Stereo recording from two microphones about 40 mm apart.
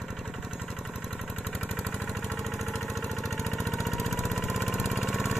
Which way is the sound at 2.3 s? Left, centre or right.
Centre.